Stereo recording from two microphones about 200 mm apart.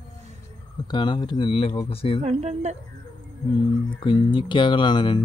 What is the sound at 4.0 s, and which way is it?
Speech, 25° left (ahead or behind).